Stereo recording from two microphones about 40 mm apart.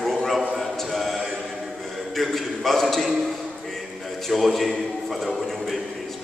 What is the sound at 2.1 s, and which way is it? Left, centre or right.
A man's voice, centre.